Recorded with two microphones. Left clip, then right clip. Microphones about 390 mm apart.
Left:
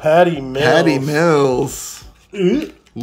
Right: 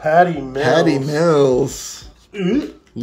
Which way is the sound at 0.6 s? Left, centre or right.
Centre.